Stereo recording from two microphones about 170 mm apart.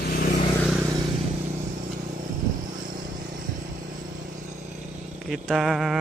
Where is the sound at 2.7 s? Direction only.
55° right (ahead or behind).